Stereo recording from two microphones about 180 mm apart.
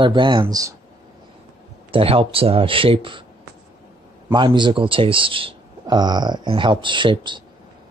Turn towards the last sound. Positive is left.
turn(degrees=-25)  # may be behind; listen again after turning